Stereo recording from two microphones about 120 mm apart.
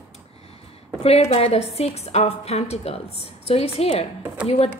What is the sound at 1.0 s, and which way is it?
A woman's voice, 55° left (ahead or behind).